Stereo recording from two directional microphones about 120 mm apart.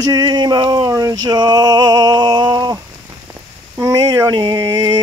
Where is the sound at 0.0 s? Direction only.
35° right (ahead or behind).